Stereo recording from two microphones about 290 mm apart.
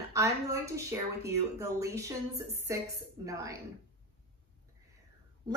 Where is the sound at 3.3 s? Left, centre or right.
Centre.